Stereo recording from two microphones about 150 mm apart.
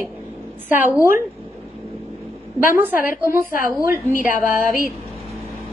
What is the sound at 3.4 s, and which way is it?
Speech, 70° left (ahead or behind).